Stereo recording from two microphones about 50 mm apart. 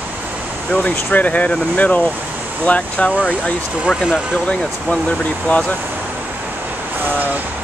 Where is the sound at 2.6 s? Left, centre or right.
Left.